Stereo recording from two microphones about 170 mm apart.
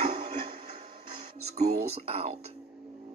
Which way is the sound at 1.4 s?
40° right (ahead or behind).